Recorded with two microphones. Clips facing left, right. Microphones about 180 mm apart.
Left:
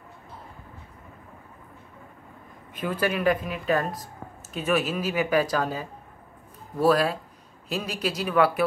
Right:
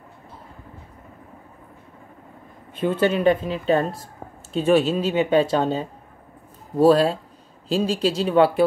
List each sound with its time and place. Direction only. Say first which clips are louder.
2.7 s speech: right 6 dB; 25° right (ahead or behind)